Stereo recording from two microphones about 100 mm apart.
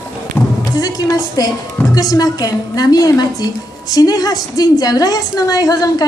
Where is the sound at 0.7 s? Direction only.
40° left (ahead or behind).